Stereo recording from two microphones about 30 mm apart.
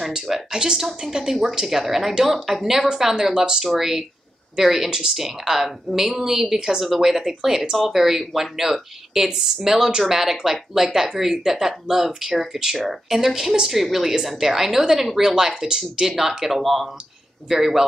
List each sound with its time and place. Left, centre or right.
0.5 s speech: right
0.7 s speech: centre
1.7 s speech: centre
3.2 s speech: right
3.6 s speech: centre
5.2 s speech: centre